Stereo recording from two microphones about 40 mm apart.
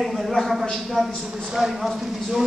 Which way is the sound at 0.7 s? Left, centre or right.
Centre.